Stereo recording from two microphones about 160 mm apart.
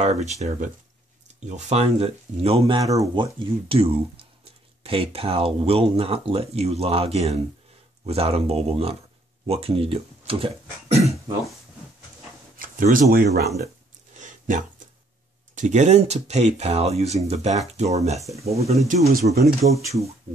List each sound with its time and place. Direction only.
0.0 s speech: 45° right (ahead or behind)
2.6 s speech: 20° right (ahead or behind)
3.3 s speech: 35° right (ahead or behind)
12.5 s speech: 60° right (ahead or behind)
14.1 s a sound: 50° right (ahead or behind)
15.5 s speech: 50° right (ahead or behind)